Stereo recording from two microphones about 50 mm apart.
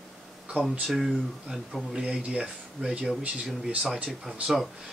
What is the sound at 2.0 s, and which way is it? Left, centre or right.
Speech, centre.